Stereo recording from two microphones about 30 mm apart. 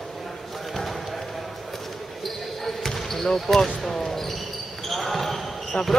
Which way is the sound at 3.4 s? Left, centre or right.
Centre.